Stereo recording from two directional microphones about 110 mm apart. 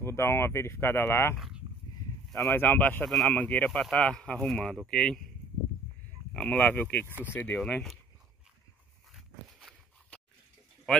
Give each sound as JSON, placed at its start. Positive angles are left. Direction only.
{"t": 0.0, "sound": "speech", "side_deg": 25}
{"t": 1.3, "sound": "speech", "side_deg": 0}
{"t": 2.5, "sound": "speech", "side_deg": 15}
{"t": 3.1, "sound": "speech", "side_deg": 0}
{"t": 3.3, "sound": "speech", "side_deg": 15}
{"t": 6.3, "sound": "speech", "side_deg": 10}
{"t": 7.1, "sound": "speech", "side_deg": -15}
{"t": 7.5, "sound": "speech", "side_deg": 5}
{"t": 9.1, "sound": "a sound", "side_deg": 0}